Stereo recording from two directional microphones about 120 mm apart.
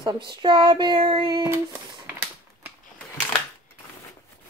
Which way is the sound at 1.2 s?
30° right (ahead or behind).